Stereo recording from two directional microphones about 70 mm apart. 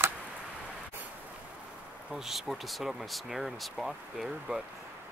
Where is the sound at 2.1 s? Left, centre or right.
Centre.